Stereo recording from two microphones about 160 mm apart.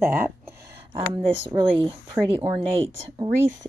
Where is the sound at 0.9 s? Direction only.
30° right (ahead or behind).